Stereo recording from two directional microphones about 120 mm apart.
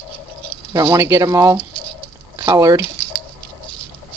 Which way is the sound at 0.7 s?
25° right (ahead or behind).